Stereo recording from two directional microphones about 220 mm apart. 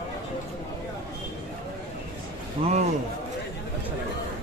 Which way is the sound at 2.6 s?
25° right (ahead or behind).